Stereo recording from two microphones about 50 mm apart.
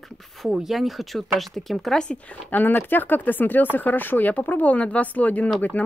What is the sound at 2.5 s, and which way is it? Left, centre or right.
Speech, left.